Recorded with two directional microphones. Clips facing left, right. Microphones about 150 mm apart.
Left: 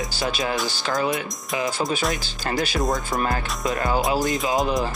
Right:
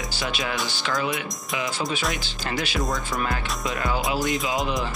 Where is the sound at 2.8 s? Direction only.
20° left (ahead or behind).